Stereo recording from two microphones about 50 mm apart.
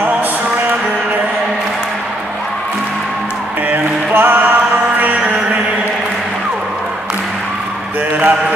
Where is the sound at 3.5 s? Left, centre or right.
Right.